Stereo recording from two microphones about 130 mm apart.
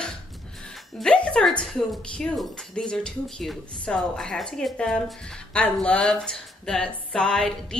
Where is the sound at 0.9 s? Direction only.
5° left (ahead or behind).